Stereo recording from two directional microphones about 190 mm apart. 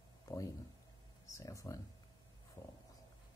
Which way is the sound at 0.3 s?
20° left (ahead or behind).